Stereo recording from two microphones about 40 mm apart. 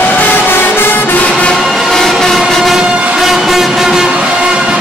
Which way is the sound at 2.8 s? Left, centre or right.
Right.